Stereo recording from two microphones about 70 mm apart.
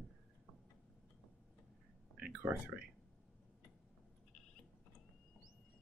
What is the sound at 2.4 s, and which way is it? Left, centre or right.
Speech, right.